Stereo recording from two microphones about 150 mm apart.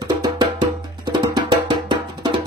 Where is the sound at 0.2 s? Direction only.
30° right (ahead or behind).